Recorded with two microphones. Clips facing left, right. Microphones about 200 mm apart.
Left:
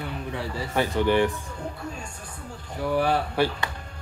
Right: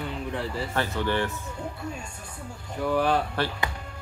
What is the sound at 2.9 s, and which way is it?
Speech, 10° left (ahead or behind).